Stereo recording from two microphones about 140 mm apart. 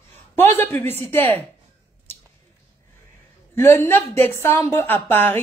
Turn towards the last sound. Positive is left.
turn(degrees=15)  # may be behind; listen again after turning